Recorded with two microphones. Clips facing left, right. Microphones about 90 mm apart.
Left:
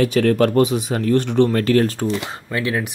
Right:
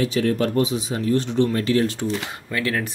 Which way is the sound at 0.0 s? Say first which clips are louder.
Left 5 dB; 60° left (ahead or behind).